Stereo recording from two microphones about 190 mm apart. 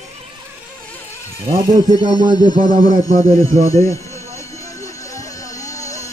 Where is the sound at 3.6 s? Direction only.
15° left (ahead or behind).